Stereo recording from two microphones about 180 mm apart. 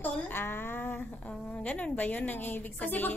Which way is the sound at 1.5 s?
10° left (ahead or behind).